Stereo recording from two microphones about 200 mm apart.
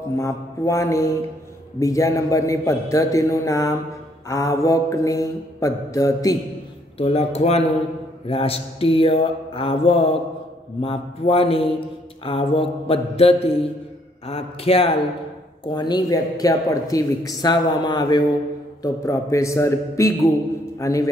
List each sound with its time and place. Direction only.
0.2 s mantra: 15° left (ahead or behind)
7.0 s speech: 30° left (ahead or behind)
18.8 s mantra: 15° left (ahead or behind)